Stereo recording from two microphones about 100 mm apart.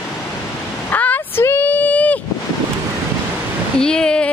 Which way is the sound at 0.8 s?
15° left (ahead or behind).